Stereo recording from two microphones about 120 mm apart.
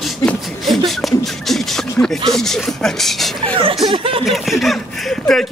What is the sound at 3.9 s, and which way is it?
Speech, 50° right (ahead or behind).